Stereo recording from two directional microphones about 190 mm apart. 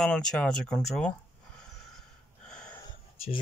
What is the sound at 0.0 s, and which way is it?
Speech, 5° left (ahead or behind).